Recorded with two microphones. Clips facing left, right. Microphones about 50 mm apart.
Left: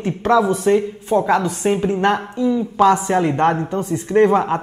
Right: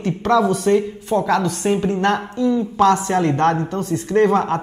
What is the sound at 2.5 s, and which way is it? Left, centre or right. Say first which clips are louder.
Speech: left 1 dB; centre.